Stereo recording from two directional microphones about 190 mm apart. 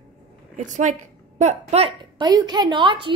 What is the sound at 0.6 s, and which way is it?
A woman's voice, 40° right (ahead or behind).